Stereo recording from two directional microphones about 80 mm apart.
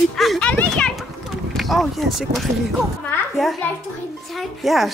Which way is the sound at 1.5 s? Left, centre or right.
Centre.